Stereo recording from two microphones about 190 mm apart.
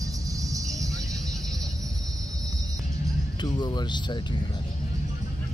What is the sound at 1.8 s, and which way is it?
Music, 20° right (ahead or behind).